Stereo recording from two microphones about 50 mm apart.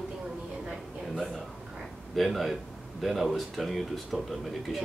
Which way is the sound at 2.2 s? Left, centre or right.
Centre.